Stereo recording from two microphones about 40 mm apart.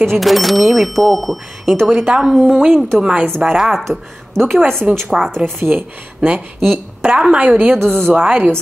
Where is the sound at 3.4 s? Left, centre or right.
Centre.